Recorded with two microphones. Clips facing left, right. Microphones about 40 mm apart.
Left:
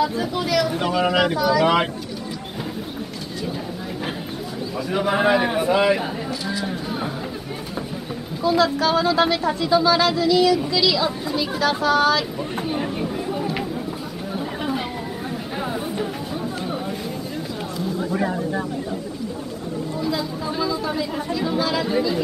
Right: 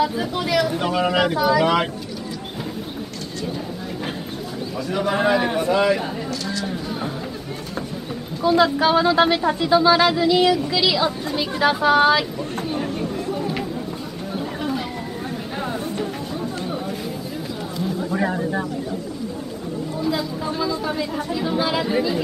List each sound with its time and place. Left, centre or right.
0.0 s speech: centre
4.9 s speech: centre
8.4 s speech: centre
12.6 s chatter: centre
18.2 s speech: centre
20.0 s chatter: centre
20.8 s speech: centre